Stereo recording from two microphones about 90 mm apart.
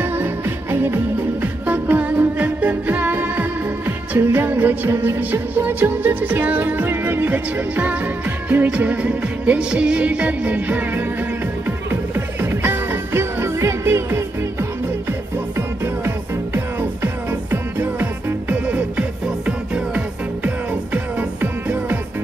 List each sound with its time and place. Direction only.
0.0 s music: 25° right (ahead or behind)